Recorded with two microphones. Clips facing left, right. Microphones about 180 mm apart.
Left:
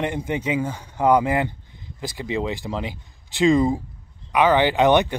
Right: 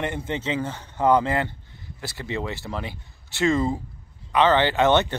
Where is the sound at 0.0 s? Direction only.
15° left (ahead or behind).